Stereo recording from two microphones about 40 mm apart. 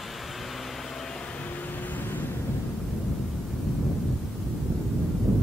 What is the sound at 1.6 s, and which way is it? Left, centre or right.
Vehicle, left.